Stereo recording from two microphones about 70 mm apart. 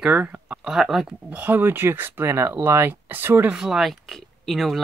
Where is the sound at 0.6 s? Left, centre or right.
Centre.